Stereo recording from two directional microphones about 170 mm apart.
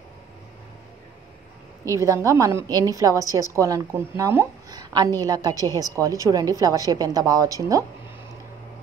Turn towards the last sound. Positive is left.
turn(degrees=-20)  # may be behind; listen again after turning